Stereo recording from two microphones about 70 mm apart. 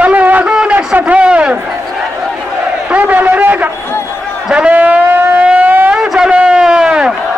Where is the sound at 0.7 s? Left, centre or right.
Right.